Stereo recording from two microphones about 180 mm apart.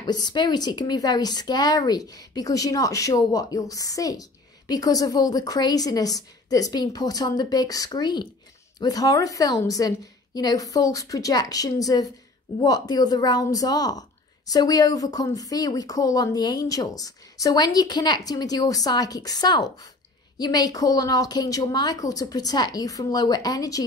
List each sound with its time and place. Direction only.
0.0 s speech: 25° left (ahead or behind)